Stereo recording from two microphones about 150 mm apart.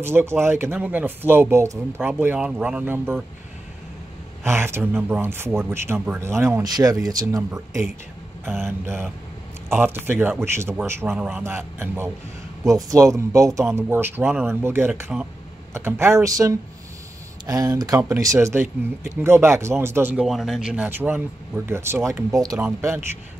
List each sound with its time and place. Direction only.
0.0 s speech: 15° right (ahead or behind)
4.5 s speech: 15° right (ahead or behind)
8.5 s speech: 15° right (ahead or behind)
11.1 s speech: 5° right (ahead or behind)
15.1 s speech: 5° right (ahead or behind)
15.7 s speech: 15° right (ahead or behind)
20.2 s speech: centre (ahead or behind); by 23.0 s 15° right (ahead or behind)